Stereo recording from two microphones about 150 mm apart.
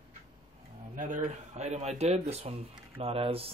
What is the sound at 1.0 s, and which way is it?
Speech, 60° right (ahead or behind).